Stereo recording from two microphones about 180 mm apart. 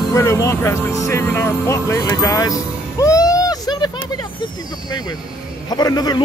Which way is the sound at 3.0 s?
20° left (ahead or behind).